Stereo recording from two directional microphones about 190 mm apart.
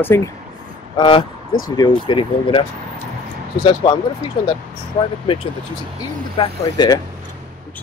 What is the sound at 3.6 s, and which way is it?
Speech, 25° left (ahead or behind).